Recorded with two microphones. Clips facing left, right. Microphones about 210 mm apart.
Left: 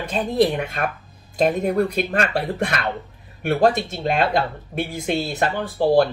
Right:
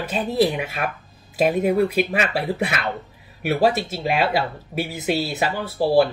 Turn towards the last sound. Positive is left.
turn(degrees=-5)  # may be behind; listen again after turning